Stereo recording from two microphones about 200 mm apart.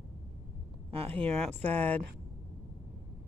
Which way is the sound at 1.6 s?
10° left (ahead or behind).